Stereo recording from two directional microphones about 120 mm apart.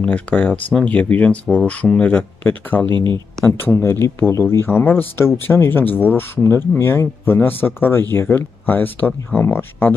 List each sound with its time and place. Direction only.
0.0 s speech: 10° left (ahead or behind)
2.9 s speech: 40° right (ahead or behind)
3.4 s speech: 20° left (ahead or behind)